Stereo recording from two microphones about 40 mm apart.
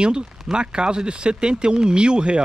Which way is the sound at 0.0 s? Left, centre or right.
Right.